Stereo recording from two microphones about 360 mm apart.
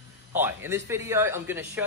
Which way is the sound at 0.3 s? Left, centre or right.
Centre.